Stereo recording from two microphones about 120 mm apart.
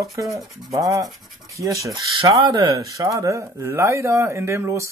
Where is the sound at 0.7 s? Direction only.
30° right (ahead or behind).